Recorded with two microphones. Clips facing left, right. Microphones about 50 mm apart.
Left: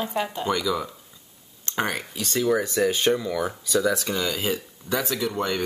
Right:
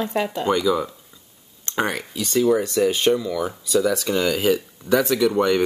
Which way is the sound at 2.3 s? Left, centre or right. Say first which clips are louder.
Right 4 dB; left.